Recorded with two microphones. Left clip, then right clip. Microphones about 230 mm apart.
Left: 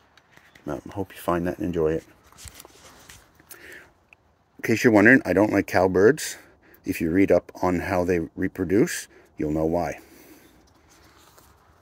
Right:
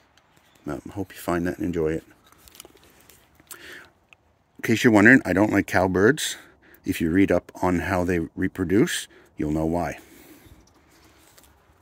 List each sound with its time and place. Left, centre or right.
0.7 s speech: right
4.6 s speech: right
7.2 s speech: right